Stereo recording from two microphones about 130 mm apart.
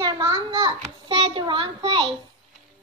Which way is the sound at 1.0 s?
40° right (ahead or behind).